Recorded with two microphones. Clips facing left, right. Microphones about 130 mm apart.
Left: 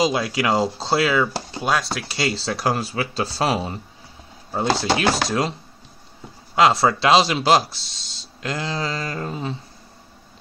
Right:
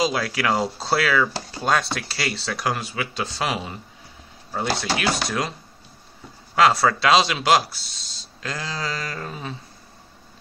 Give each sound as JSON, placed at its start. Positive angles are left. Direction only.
{"t": 0.0, "sound": "speech", "side_deg": 25}
{"t": 1.6, "sound": "speech", "side_deg": 0}
{"t": 2.0, "sound": "speech", "side_deg": 25}
{"t": 4.7, "sound": "speech", "side_deg": 30}
{"t": 6.5, "sound": "speech", "side_deg": 25}